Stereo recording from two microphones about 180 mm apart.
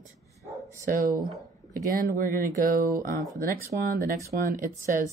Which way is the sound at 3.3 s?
15° right (ahead or behind).